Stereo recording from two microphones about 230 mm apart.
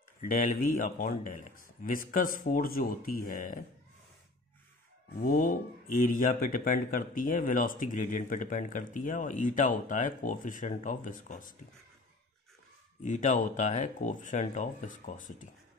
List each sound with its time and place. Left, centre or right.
0.2 s speech: left
5.2 s speech: left
13.0 s speech: left